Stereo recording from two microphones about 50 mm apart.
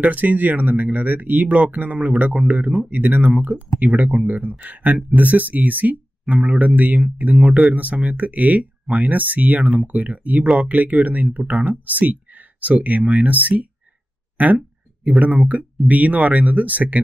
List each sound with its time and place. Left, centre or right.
0.0 s speech: right